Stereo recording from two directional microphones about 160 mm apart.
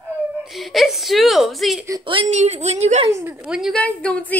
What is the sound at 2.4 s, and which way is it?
Speech, 45° right (ahead or behind).